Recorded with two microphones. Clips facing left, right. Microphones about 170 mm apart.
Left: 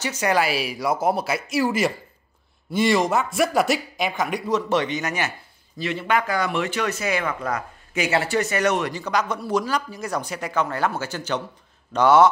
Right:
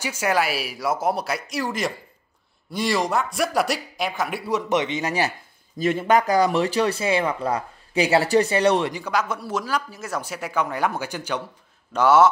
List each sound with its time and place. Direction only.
0.0 s a man's voice: 10° right (ahead or behind); by 5.3 s 30° right (ahead or behind)
5.8 s speech: 45° right (ahead or behind); by 8.9 s 30° right (ahead or behind)
8.9 s a man's voice: 10° right (ahead or behind)